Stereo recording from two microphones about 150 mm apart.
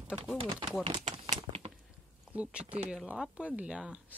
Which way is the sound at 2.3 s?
10° right (ahead or behind).